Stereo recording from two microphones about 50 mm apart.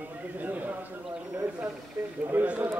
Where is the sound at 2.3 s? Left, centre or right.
Right.